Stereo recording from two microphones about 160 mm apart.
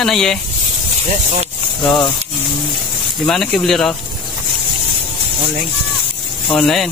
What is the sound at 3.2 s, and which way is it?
Speech, centre (ahead or behind).